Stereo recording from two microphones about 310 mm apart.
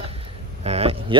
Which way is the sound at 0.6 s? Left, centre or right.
Centre.